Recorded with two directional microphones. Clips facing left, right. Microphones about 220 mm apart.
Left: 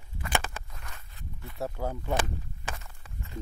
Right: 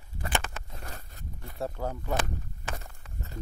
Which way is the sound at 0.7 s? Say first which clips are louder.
Right 5 dB; 35° right (ahead or behind).